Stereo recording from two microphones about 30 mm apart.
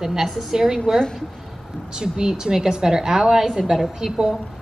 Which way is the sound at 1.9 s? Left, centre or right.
Right.